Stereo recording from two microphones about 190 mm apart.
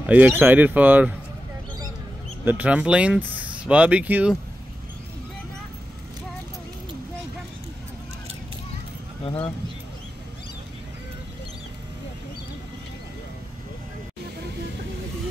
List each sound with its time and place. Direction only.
0.0 s speech: 10° right (ahead or behind)
2.4 s speech: 5° right (ahead or behind)